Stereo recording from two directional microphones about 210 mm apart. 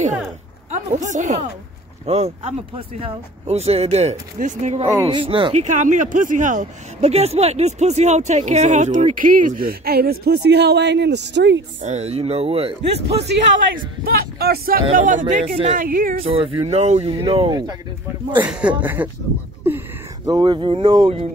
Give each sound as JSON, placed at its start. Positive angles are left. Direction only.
{"t": 0.7, "sound": "speech", "side_deg": -35}
{"t": 4.9, "sound": "speech", "side_deg": -20}
{"t": 11.8, "sound": "speech", "side_deg": -30}
{"t": 12.9, "sound": "speech", "side_deg": -55}
{"t": 18.3, "sound": "speech", "side_deg": -5}
{"t": 20.2, "sound": "speech", "side_deg": -20}